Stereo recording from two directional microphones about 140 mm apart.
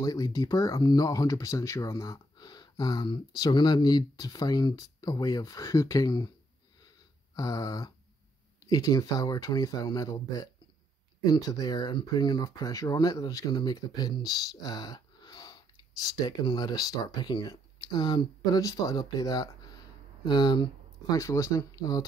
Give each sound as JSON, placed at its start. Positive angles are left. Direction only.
{"t": 0.0, "sound": "speech", "side_deg": 25}
{"t": 7.3, "sound": "speech", "side_deg": 25}